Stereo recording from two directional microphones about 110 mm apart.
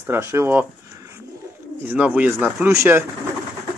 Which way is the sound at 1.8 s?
10° right (ahead or behind).